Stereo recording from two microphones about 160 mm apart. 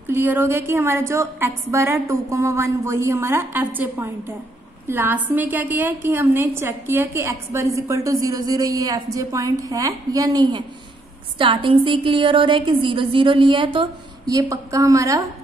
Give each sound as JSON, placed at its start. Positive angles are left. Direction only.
{"t": 0.1, "sound": "a woman's voice", "side_deg": -15}